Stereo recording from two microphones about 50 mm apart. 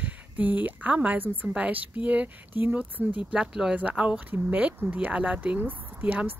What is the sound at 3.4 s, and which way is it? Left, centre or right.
Speech, centre.